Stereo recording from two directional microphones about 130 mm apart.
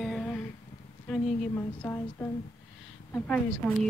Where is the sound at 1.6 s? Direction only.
15° left (ahead or behind).